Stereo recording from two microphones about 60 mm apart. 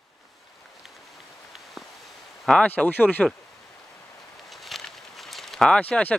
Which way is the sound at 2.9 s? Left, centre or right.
Left.